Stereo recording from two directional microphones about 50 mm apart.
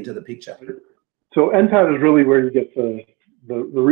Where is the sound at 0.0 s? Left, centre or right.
Centre.